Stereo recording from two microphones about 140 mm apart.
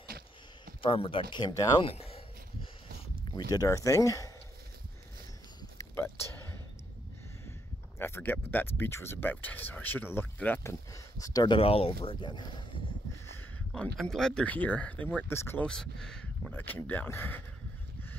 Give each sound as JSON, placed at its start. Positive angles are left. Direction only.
{"t": 0.8, "sound": "speech", "side_deg": 40}
{"t": 3.3, "sound": "speech", "side_deg": 30}
{"t": 5.8, "sound": "a sound", "side_deg": 15}
{"t": 8.0, "sound": "speech", "side_deg": 15}
{"t": 13.7, "sound": "speech", "side_deg": 5}
{"t": 15.6, "sound": "speech", "side_deg": 5}